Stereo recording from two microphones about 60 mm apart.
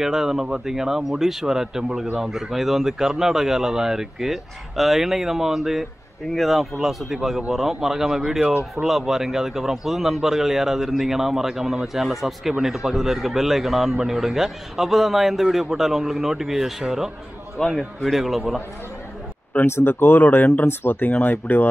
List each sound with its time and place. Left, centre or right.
0.0 s a man's voice: centre
17.6 s a man's voice: centre
19.6 s speech: left